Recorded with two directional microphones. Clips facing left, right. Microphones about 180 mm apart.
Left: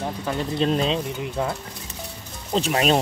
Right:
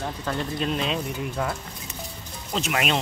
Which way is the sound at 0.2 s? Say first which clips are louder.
Left 1 dB; 10° left (ahead or behind).